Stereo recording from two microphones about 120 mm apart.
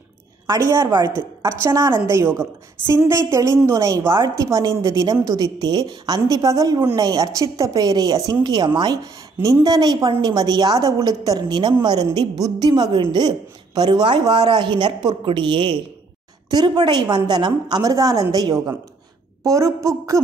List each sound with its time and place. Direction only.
0.5 s a woman's voice: 25° right (ahead or behind)